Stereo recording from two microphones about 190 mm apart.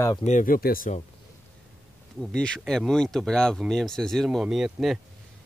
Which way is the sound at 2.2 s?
5° left (ahead or behind).